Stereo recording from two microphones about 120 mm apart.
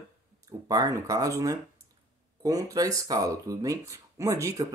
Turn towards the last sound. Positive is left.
turn(degrees=-25)  # may be behind; listen again after turning